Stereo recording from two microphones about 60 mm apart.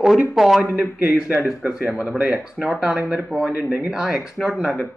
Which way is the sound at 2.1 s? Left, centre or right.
Right.